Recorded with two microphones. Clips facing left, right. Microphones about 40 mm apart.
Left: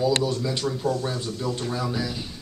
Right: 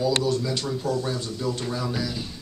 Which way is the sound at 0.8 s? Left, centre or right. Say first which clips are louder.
Left 1 dB; left.